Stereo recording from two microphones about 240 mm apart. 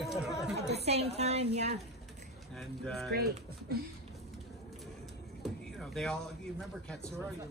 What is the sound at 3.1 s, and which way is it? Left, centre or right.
Speech, right.